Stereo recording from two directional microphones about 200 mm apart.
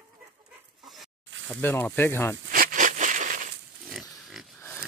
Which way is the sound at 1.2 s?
70° right (ahead or behind).